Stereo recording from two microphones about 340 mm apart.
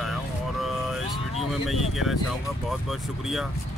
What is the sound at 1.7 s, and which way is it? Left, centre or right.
Speech, centre.